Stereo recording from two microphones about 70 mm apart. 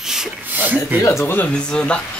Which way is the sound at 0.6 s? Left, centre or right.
Right.